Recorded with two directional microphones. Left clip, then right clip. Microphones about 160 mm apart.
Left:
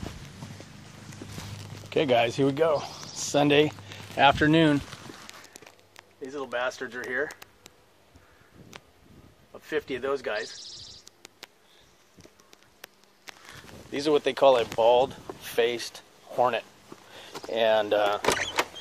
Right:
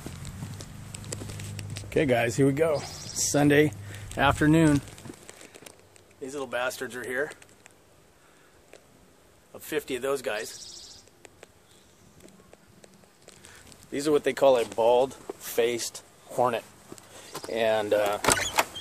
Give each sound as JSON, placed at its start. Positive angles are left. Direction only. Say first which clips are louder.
{"t": 1.9, "sound": "speech", "louder": "left 1 dB", "side_deg": -5}
{"t": 4.2, "sound": "speech", "louder": "left 3 dB", "side_deg": 0}
{"t": 4.5, "sound": "speech", "louder": "even", "side_deg": 10}
{"t": 6.2, "sound": "speech", "louder": "even", "side_deg": 10}
{"t": 9.5, "sound": "speech", "louder": "even", "side_deg": 10}
{"t": 13.9, "sound": "speech", "louder": "even", "side_deg": 0}